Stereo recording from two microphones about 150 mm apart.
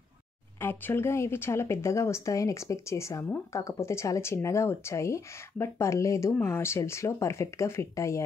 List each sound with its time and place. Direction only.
0.6 s speech: 15° left (ahead or behind)